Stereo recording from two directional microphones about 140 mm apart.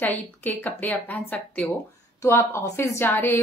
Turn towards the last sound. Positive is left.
turn(degrees=15)  # may be behind; listen again after turning